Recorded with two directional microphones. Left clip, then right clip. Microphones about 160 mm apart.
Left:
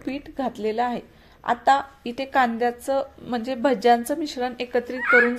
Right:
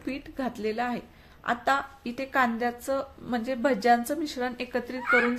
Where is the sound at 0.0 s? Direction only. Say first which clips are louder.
Left 5 dB; 15° left (ahead or behind).